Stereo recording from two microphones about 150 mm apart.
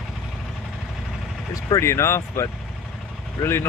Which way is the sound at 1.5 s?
20° left (ahead or behind).